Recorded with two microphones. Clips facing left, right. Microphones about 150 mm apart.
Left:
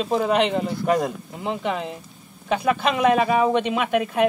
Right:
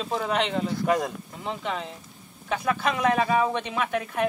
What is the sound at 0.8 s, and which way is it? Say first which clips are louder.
Speech: left 4 dB; 5° left (ahead or behind).